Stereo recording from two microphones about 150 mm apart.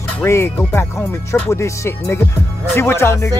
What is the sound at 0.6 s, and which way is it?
Music, 15° left (ahead or behind).